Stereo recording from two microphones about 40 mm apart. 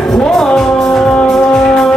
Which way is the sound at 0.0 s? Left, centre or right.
Centre.